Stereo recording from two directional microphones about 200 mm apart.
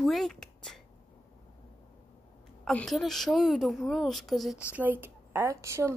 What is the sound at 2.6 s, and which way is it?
A woman's voice, centre (ahead or behind).